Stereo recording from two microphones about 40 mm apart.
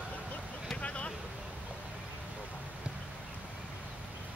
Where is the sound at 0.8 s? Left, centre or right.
Left.